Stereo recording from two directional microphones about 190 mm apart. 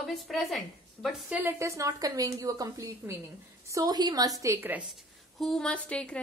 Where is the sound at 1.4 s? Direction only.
15° right (ahead or behind).